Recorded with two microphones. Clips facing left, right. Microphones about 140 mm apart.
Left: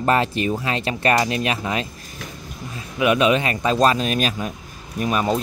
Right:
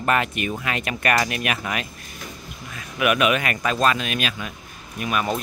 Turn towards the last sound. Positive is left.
turn(degrees=30)  # may be behind; listen again after turning